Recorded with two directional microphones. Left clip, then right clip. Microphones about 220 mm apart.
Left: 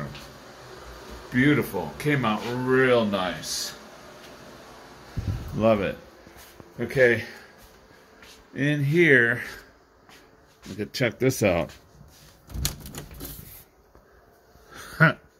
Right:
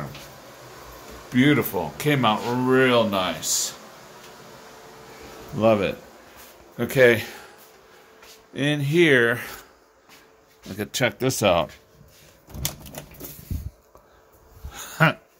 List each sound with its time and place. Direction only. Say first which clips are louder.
1.3 s speech: right 2 dB; 15° right (ahead or behind)
5.6 s speech: right 2 dB; 15° right (ahead or behind)
6.8 s speech: right 3 dB; 25° right (ahead or behind)
8.5 s speech: right 2 dB; 15° right (ahead or behind)
10.8 s speech: right 2 dB; 25° right (ahead or behind)
14.7 s a sound: even; 10° right (ahead or behind)